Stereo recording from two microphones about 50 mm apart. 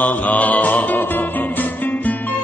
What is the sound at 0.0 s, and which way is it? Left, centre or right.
Music, left.